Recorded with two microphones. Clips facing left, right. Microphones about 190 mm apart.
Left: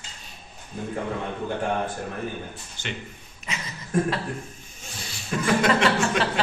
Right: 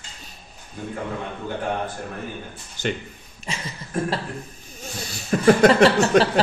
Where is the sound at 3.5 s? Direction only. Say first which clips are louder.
Right 2 dB; 30° right (ahead or behind).